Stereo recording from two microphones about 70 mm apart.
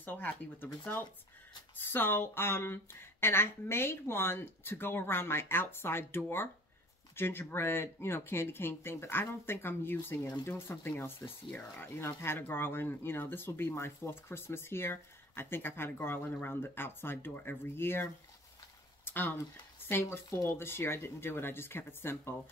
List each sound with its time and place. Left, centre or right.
0.0 s speech: left